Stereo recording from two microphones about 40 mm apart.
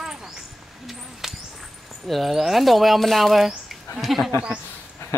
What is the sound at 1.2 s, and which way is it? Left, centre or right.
Walk, centre.